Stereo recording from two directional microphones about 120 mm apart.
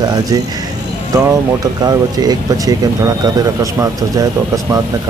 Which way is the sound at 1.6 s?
35° right (ahead or behind).